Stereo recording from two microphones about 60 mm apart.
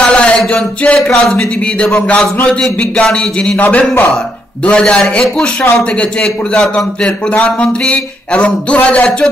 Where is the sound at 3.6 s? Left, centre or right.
Left.